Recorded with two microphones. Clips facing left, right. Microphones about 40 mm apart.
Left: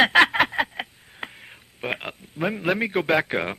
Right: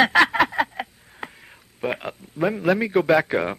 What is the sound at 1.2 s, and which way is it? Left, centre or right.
Radio, left.